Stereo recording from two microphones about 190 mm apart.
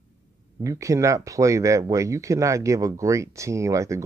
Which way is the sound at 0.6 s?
15° right (ahead or behind).